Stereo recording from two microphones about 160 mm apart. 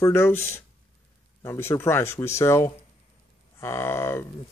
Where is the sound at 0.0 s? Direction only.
15° left (ahead or behind).